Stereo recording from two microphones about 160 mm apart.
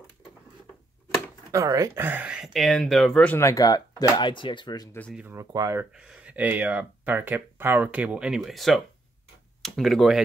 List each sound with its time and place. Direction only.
1.5 s speech: 20° right (ahead or behind); by 3.3 s 5° left (ahead or behind)
3.3 s speech: 20° left (ahead or behind)
5.1 s speech: 15° right (ahead or behind)
5.8 s speech: 5° right (ahead or behind)